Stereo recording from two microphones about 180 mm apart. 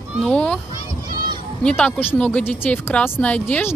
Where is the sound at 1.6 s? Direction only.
5° left (ahead or behind).